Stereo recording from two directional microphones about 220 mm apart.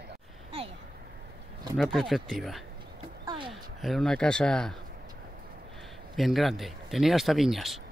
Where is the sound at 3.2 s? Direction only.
20° right (ahead or behind).